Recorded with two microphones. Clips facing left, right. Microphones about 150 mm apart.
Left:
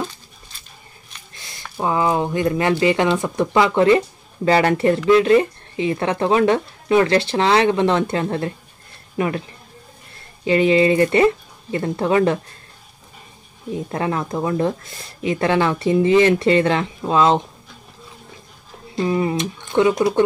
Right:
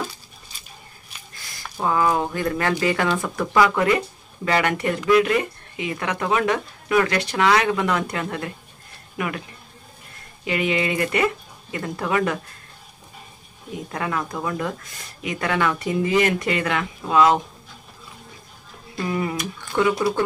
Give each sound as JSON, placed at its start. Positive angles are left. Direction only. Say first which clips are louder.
{"t": 1.8, "sound": "speech", "louder": "left 2 dB", "side_deg": 20}
{"t": 10.4, "sound": "speech", "louder": "left 8 dB", "side_deg": 30}
{"t": 13.9, "sound": "speech", "louder": "left 4 dB", "side_deg": 30}
{"t": 18.9, "sound": "speech", "louder": "left 5 dB", "side_deg": 25}